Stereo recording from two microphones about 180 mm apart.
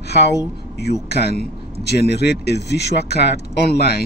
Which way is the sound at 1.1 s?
65° left (ahead or behind).